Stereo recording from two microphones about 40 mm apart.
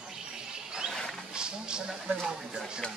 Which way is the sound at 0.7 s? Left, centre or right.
Centre.